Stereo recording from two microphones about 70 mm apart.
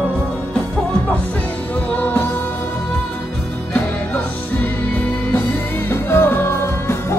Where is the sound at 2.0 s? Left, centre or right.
Left.